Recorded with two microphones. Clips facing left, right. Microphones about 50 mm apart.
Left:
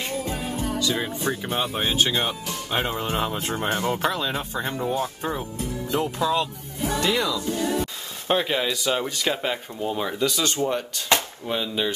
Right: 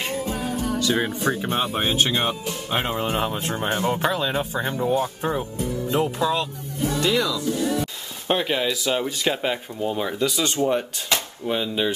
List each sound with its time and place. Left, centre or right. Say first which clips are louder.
0.7 s speech: right 4 dB; right
1.3 s speech: right 2 dB; centre
7.0 s speech: right 2 dB; centre
7.2 s speech: right 1 dB; left
8.3 s speech: right 1 dB; centre